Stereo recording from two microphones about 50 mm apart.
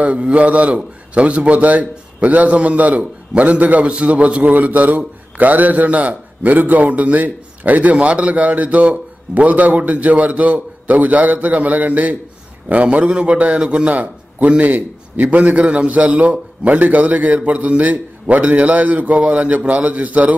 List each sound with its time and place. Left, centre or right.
0.0 s a man's voice: right